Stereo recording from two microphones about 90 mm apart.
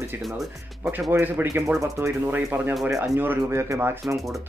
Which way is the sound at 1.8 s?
35° right (ahead or behind).